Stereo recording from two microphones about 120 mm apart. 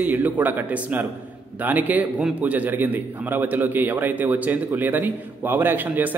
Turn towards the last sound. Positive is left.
turn(degrees=-15)  # may be behind; listen again after turning